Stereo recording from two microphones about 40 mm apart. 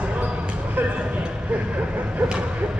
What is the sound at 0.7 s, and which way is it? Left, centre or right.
Vehicle, right.